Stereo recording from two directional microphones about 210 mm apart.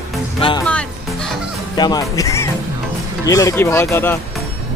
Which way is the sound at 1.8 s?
15° left (ahead or behind).